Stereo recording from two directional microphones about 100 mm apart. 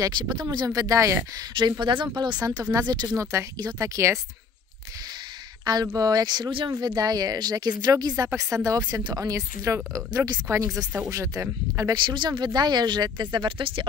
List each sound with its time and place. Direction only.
0.4 s speech: 50° right (ahead or behind)
0.7 s speech: 35° right (ahead or behind)
1.6 s speech: 50° right (ahead or behind); by 4.2 s 30° right (ahead or behind)
5.9 s speech: 40° right (ahead or behind)
6.7 s speech: 40° right (ahead or behind)
11.9 s speech: 50° right (ahead or behind)